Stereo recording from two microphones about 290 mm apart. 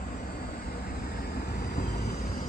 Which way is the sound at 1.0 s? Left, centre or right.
Left.